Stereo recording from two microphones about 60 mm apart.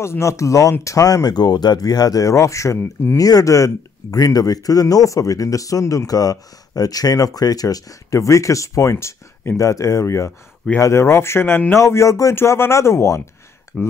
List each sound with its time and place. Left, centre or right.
0.0 s speech: left
0.8 s speech: left
2.8 s speech: left
3.2 s speech: left
12.4 s speech: left
13.7 s speech: left